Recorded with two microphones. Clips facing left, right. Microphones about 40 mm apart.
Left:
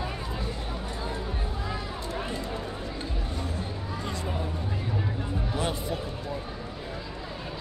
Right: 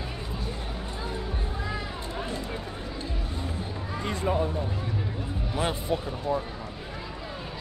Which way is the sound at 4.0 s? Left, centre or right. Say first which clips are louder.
Right 5 dB; right.